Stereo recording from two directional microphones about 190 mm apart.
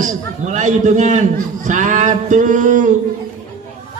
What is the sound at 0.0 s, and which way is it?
A man's voice, 40° right (ahead or behind).